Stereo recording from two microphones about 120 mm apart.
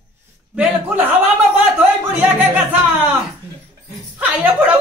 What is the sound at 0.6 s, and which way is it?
A man's voice, 15° right (ahead or behind).